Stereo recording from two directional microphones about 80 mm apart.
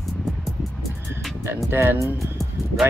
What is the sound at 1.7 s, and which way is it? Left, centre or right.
Speech, right.